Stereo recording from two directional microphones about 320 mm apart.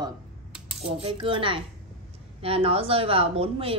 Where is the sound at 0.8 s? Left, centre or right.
Centre.